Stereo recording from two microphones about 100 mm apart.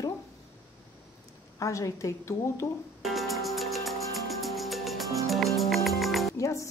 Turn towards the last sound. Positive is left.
turn(degrees=30)  # may be behind; listen again after turning